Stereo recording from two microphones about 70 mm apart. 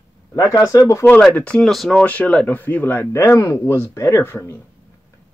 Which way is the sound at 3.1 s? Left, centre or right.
Left.